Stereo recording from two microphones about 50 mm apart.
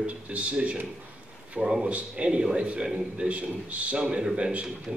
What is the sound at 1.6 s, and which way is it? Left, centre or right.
A man's voice, centre.